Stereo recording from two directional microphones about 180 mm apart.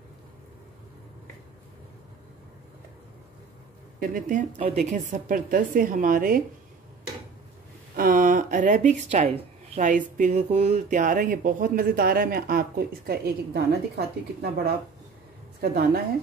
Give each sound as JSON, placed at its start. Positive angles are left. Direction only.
{"t": 4.0, "sound": "speech", "side_deg": -50}
{"t": 7.9, "sound": "a woman's voice", "side_deg": -50}